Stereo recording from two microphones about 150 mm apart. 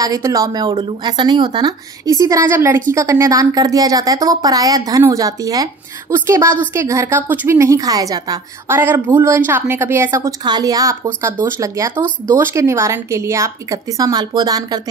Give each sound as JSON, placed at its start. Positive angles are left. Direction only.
{"t": 0.0, "sound": "speech", "side_deg": -25}